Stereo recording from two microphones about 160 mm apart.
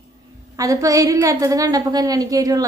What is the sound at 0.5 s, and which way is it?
A woman's voice, 20° right (ahead or behind).